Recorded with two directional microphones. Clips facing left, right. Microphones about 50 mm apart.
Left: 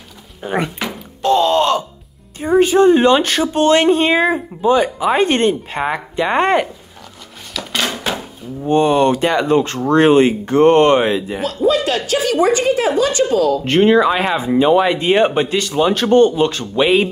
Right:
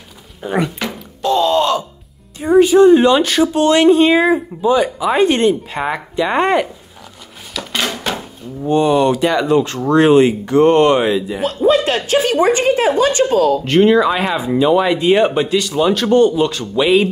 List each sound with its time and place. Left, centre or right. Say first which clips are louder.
0.8 s music: right 1 dB; centre
1.2 s groan: left 1 dB; left
2.6 s speech: right 2 dB; left
7.5 s a sound: even; centre
8.6 s speech: even; left
11.4 s a woman's voice: right 2 dB; right
13.7 s speech: left 1 dB; left